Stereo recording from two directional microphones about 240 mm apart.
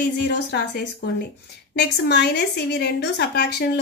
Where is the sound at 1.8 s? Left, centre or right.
Left.